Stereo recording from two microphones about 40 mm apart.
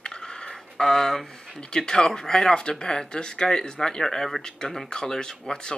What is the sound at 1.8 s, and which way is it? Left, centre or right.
Speech, centre.